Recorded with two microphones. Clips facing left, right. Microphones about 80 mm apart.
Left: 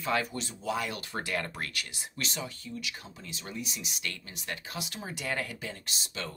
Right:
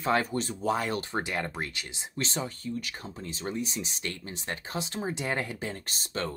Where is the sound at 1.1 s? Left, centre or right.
Right.